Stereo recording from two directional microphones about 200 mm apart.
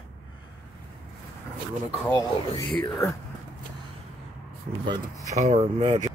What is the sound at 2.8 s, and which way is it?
Speech, 15° left (ahead or behind).